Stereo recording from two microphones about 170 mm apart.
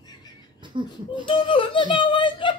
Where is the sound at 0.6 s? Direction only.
25° right (ahead or behind).